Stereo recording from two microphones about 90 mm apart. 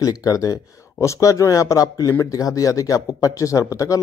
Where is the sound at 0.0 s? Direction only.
45° left (ahead or behind).